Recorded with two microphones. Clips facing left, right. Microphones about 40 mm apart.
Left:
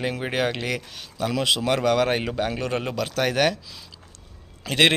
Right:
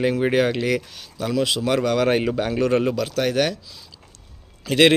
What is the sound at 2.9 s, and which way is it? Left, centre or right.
Speech, left.